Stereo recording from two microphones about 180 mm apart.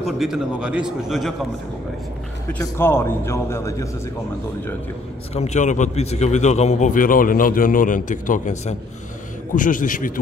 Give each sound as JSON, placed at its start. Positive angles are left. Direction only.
{"t": 0.0, "sound": "a man's voice", "side_deg": 0}
{"t": 2.6, "sound": "a man's voice", "side_deg": 15}
{"t": 5.3, "sound": "a man's voice", "side_deg": 40}